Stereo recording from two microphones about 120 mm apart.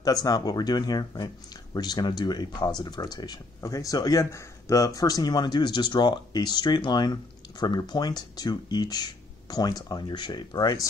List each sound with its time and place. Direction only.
0.0 s speech: 30° left (ahead or behind)